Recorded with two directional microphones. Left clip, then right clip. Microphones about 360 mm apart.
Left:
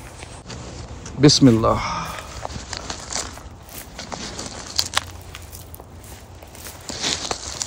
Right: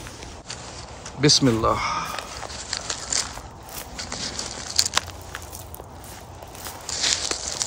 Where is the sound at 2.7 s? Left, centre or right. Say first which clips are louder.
Right 2 dB; centre.